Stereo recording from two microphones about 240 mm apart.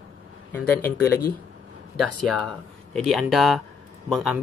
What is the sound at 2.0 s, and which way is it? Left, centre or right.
Speech, centre.